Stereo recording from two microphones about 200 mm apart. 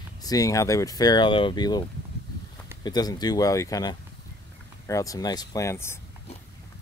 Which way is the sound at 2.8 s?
20° left (ahead or behind).